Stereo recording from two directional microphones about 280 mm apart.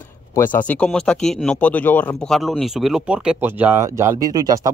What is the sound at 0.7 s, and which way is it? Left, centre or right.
Speech, centre.